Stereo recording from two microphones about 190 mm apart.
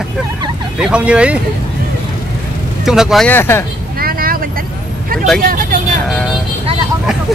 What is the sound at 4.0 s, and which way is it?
Vehicle, 50° right (ahead or behind).